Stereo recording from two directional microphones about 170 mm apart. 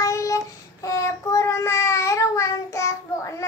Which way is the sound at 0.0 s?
20° left (ahead or behind).